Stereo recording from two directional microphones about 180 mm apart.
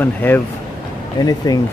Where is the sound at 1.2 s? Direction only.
20° left (ahead or behind).